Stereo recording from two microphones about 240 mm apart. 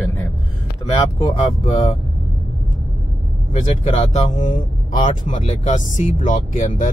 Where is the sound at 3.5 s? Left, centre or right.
Left.